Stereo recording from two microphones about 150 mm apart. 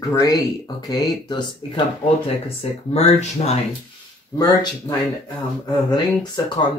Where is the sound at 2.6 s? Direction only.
45° left (ahead or behind).